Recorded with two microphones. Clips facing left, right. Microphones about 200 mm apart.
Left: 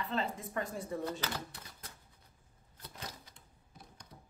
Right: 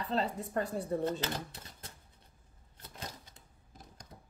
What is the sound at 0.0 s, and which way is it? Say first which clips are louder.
Speech: right 3 dB; 35° right (ahead or behind).